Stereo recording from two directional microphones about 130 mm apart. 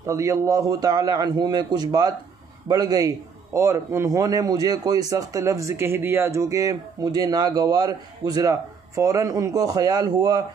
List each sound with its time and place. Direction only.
0.0 s speech: 25° right (ahead or behind)